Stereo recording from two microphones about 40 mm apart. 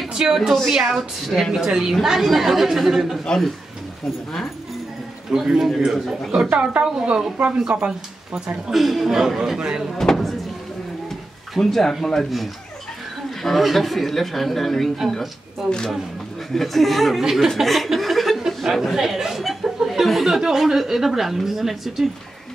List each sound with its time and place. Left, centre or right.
0.1 s speech: centre
5.3 s speech: centre
6.5 s a woman's voice: right
8.7 s a woman's voice: centre
9.9 s speech: centre
11.5 s speech: centre
15.6 s speech: centre
16.5 s speech: centre
17.2 s speech: centre
17.5 s speech: centre
17.8 s chuckle: centre
18.6 s speech: centre